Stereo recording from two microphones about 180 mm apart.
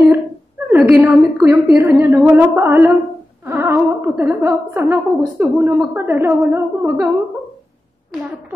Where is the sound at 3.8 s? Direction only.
Centre (ahead or behind).